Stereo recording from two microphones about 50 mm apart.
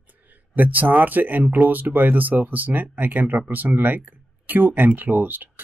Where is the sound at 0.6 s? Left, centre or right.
Right.